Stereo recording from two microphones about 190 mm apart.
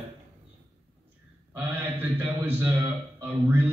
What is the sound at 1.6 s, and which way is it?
A man's voice, 10° right (ahead or behind).